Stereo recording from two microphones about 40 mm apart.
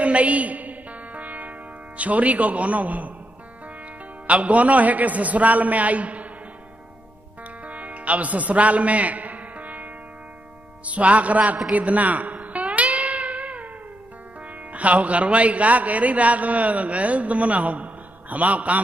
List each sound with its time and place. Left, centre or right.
0.0 s music: right
2.0 s a man's voice: right
4.3 s a man's voice: right
7.6 s music: right
10.9 s a man's voice: right
11.7 s music: right
14.7 s a man's voice: right